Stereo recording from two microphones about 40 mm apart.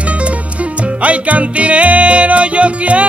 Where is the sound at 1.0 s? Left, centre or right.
Right.